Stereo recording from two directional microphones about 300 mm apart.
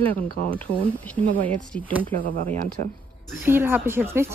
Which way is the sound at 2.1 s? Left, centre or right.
Right.